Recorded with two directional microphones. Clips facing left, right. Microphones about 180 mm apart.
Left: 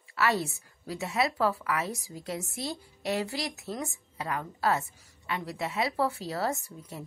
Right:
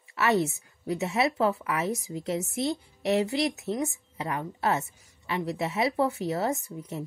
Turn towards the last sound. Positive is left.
turn(degrees=-20)  # may be behind; listen again after turning